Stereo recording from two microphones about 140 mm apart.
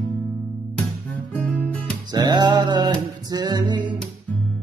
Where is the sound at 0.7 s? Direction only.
10° left (ahead or behind).